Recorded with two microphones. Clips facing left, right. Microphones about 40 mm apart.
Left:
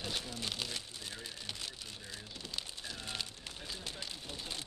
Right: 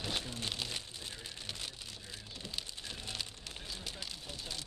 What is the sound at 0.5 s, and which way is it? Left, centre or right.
Speech, centre.